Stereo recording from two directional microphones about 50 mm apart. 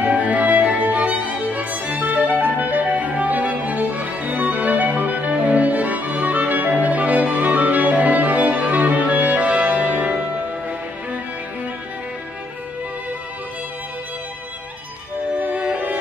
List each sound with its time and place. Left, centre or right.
0.0 s music: right
15.6 s music: right